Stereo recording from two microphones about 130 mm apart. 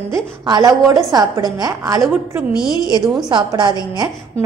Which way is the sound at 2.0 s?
5° right (ahead or behind).